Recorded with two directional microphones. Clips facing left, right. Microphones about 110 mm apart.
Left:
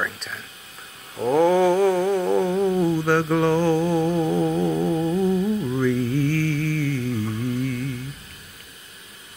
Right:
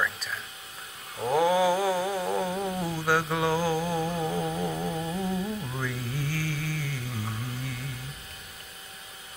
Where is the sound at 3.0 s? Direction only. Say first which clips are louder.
Left 2 dB; 5° right (ahead or behind).